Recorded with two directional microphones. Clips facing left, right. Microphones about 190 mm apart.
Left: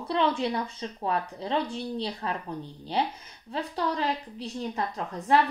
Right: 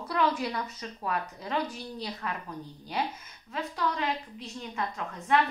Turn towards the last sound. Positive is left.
turn(degrees=35)  # may be behind; listen again after turning